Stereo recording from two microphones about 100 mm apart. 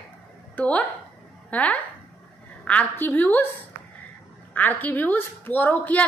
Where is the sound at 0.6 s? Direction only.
15° left (ahead or behind).